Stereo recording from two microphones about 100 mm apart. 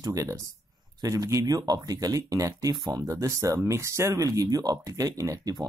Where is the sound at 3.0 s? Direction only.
30° right (ahead or behind).